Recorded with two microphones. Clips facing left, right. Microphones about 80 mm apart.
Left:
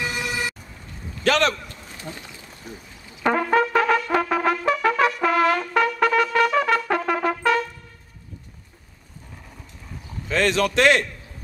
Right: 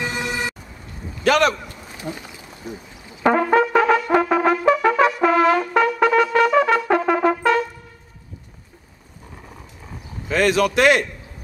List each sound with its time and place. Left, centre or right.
0.0 s vehicle: right
1.2 s a sound: centre
7.1 s brass instrument: centre
10.2 s a man's voice: centre